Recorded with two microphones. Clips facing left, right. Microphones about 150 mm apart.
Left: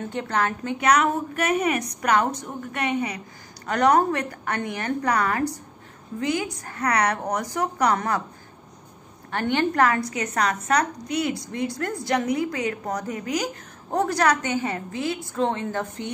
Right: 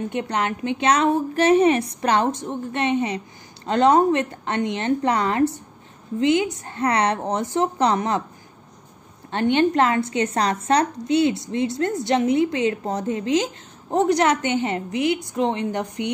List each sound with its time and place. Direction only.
0.1 s a woman's voice: 20° right (ahead or behind)
9.3 s a woman's voice: 20° right (ahead or behind)